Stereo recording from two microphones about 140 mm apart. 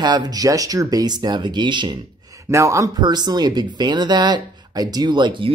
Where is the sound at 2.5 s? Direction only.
20° right (ahead or behind).